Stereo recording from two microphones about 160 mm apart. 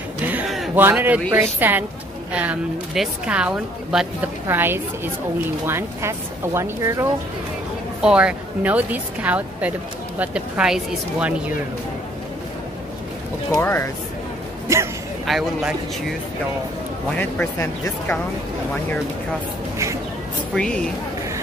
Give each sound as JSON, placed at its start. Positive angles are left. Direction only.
{"t": 0.2, "sound": "a sound", "side_deg": -10}
{"t": 0.7, "sound": "a woman's voice", "side_deg": -10}
{"t": 4.5, "sound": "speech", "side_deg": -15}
{"t": 8.0, "sound": "speech", "side_deg": -5}
{"t": 13.6, "sound": "speech", "side_deg": 15}
{"t": 14.7, "sound": "speech", "side_deg": -20}
{"t": 15.2, "sound": "a woman's voice", "side_deg": 0}
{"t": 17.1, "sound": "speech", "side_deg": 10}
{"t": 20.5, "sound": "a woman's voice", "side_deg": 5}